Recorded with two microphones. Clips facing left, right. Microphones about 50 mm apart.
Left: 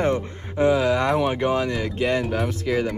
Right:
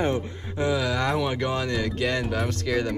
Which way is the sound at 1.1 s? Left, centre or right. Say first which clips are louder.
Left 5 dB; left.